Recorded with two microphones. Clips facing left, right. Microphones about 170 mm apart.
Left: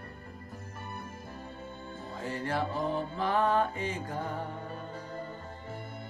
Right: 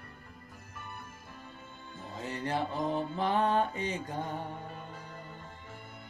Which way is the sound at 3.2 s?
20° right (ahead or behind).